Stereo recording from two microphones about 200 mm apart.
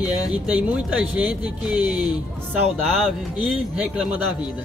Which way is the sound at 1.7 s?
20° left (ahead or behind).